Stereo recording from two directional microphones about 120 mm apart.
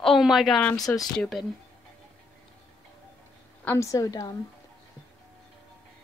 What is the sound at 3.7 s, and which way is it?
Speech, 25° left (ahead or behind).